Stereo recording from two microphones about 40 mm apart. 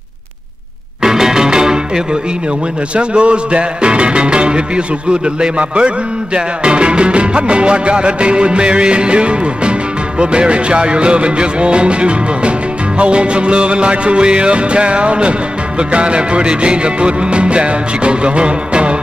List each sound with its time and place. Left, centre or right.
1.0 s music: centre
3.0 s music: right